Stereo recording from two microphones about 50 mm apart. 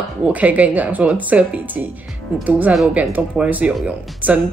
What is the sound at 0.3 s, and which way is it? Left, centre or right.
Speech, right.